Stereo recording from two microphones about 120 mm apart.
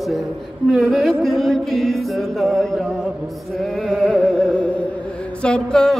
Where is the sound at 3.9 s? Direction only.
5° left (ahead or behind).